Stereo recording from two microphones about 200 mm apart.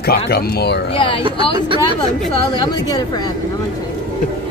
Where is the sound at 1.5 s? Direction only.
25° right (ahead or behind).